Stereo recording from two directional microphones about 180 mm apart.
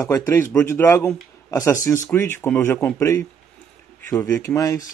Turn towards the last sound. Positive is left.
turn(degrees=15)  # may be behind; listen again after turning